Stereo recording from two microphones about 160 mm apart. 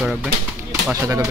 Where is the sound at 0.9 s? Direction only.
20° right (ahead or behind).